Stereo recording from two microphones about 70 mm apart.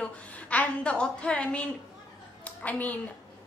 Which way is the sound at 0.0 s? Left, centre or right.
Centre.